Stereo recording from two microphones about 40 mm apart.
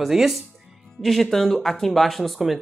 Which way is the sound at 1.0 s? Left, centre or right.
Centre.